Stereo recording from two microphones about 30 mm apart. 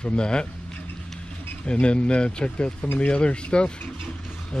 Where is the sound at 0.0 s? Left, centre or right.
Left.